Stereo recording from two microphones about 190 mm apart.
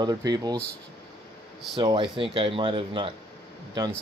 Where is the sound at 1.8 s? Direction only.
25° right (ahead or behind).